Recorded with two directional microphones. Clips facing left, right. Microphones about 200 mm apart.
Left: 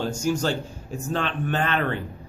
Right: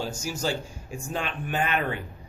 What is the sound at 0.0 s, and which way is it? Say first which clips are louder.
A man's voice: left 6 dB; 5° right (ahead or behind).